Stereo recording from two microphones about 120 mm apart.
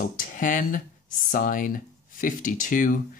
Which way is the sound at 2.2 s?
90° left.